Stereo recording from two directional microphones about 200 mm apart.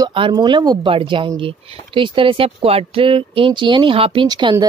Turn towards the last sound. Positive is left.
turn(degrees=-20)  # may be behind; listen again after turning